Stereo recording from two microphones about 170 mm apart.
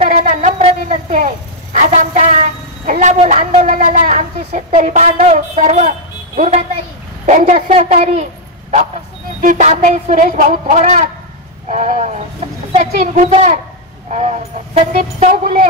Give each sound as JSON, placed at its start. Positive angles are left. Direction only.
{"t": 0.0, "sound": "a sound", "side_deg": -50}
{"t": 7.2, "sound": "a woman's voice", "side_deg": -45}
{"t": 9.4, "sound": "a woman's voice", "side_deg": -50}